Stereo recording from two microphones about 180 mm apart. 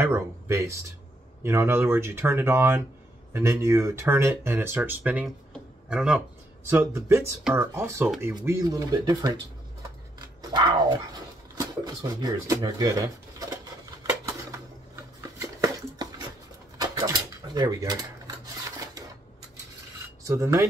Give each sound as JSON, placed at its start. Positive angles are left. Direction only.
{"t": 0.0, "sound": "speech", "side_deg": -15}
{"t": 5.5, "sound": "a sound", "side_deg": -5}
{"t": 6.7, "sound": "speech", "side_deg": -15}
{"t": 10.1, "sound": "dog", "side_deg": -25}
{"t": 11.5, "sound": "a sound", "side_deg": -20}
{"t": 20.2, "sound": "speech", "side_deg": -15}